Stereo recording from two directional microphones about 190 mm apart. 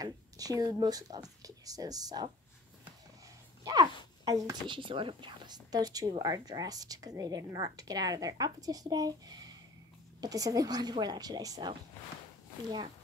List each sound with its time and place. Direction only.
0.0 s speech: 20° right (ahead or behind)
3.6 s speech: 20° right (ahead or behind)